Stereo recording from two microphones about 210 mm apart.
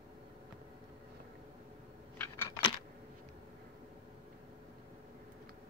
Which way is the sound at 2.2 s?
15° left (ahead or behind).